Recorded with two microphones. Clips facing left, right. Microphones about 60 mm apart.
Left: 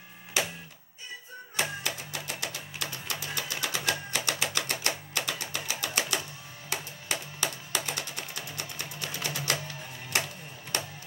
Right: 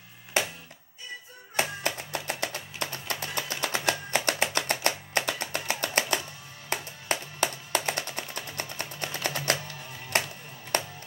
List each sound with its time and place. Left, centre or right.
1.6 s music: right